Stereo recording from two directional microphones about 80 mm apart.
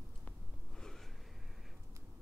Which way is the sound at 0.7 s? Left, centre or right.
Centre.